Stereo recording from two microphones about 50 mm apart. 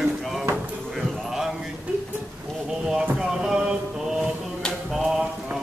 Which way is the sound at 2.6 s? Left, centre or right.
Centre.